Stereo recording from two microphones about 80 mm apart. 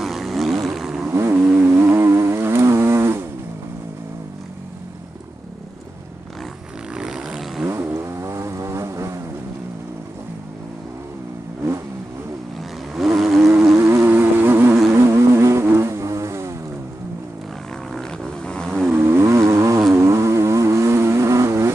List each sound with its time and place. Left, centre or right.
0.0 s vehicle: centre
1.0 s vehicle: right
1.3 s vehicle: centre
1.7 s a sound: right
6.9 s a sound: centre
7.6 s vehicle: right
12.9 s vehicle: centre
13.7 s music: right
14.9 s vehicle: right
18.4 s vehicle: centre
18.9 s vehicle: right